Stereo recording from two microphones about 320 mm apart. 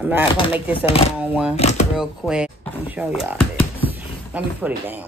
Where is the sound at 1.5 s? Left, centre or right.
Centre.